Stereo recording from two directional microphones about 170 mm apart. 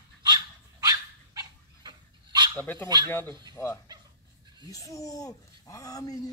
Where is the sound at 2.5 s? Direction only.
10° left (ahead or behind).